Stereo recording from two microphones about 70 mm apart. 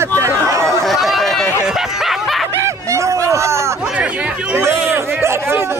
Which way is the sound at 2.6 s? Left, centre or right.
Right.